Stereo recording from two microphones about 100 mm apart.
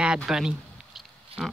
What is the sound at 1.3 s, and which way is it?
Pig, 75° right (ahead or behind).